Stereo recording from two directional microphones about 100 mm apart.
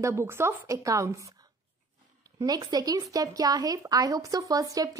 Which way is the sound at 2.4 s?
40° right (ahead or behind).